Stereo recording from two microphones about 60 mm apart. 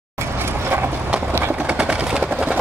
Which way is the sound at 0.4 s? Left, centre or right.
Right.